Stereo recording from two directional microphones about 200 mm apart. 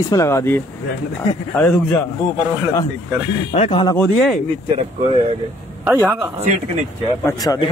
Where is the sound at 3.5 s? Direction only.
25° left (ahead or behind).